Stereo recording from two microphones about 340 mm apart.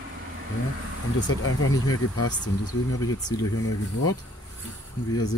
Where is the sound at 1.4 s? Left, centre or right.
Left.